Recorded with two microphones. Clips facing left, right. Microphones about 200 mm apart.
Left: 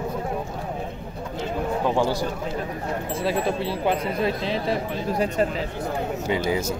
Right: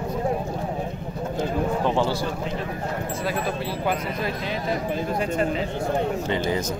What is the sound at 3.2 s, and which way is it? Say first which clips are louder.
Speech: left 4 dB; 25° left (ahead or behind).